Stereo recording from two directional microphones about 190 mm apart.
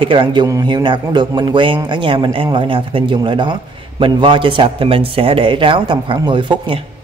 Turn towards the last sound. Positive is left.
turn(degrees=-25)  # may be behind; listen again after turning